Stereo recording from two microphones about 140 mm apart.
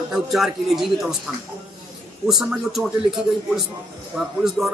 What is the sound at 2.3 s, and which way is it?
Speech, 5° right (ahead or behind).